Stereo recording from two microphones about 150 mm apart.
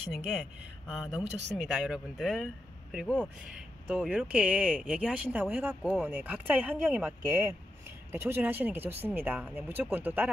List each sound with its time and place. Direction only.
0.1 s speech: centre (ahead or behind)
3.9 s speech: 10° right (ahead or behind)